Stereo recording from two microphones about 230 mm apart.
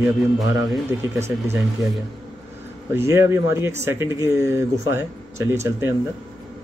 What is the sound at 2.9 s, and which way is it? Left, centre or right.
Speech, centre.